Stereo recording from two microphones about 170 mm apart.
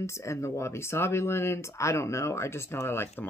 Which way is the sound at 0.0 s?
15° left (ahead or behind).